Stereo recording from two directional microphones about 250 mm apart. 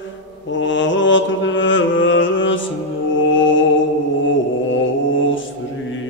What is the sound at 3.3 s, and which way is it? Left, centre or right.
Music, left.